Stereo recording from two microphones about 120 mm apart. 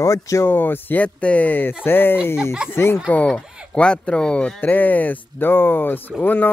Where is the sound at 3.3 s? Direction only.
5° right (ahead or behind).